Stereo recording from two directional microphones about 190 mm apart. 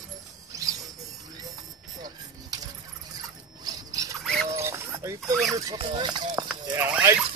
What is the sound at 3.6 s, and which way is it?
Rodents, 20° right (ahead or behind).